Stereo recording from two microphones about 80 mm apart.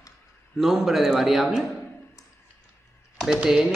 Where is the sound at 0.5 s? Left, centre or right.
Centre.